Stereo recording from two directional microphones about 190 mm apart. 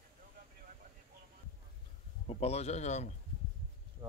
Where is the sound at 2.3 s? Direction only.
35° left (ahead or behind).